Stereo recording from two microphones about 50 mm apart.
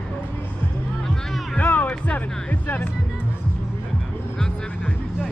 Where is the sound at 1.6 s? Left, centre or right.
Left.